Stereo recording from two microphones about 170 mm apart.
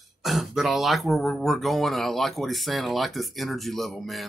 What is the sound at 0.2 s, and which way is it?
Speech, centre (ahead or behind).